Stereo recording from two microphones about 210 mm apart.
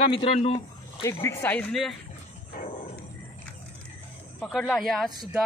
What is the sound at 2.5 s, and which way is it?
Wild animals, 40° left (ahead or behind).